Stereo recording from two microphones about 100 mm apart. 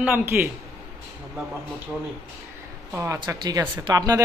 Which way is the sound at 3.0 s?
30° right (ahead or behind).